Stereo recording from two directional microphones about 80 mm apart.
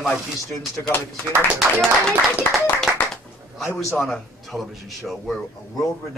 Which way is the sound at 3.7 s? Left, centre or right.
Centre.